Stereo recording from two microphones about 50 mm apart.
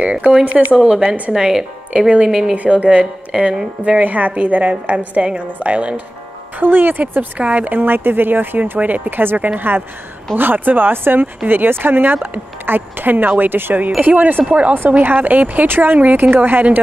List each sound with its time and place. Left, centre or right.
0.0 s a woman's voice: right
1.3 s speech: centre
2.0 s speech: right
2.5 s a woman's voice: right
4.0 s a woman's voice: right
6.6 s speech: right
7.3 s speech: right
8.7 s speech: right